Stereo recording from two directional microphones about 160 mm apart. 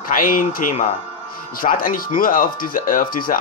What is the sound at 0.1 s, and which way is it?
Speech, 60° left (ahead or behind).